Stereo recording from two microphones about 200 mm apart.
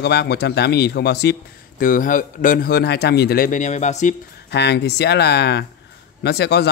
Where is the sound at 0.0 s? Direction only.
55° left (ahead or behind).